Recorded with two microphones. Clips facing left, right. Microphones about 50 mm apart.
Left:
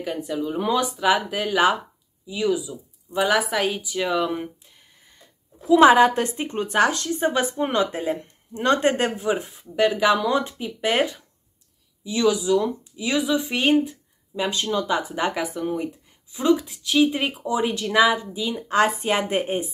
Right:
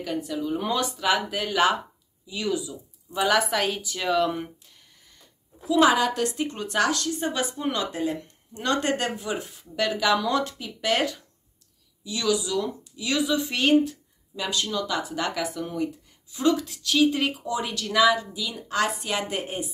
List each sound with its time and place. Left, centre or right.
0.0 s speech: centre
5.7 s speech: left